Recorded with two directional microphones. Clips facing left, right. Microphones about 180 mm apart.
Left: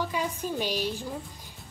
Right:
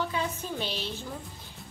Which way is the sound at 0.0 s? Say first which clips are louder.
Left 1 dB; 10° left (ahead or behind).